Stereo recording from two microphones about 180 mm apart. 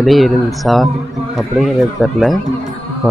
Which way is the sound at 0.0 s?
Centre (ahead or behind).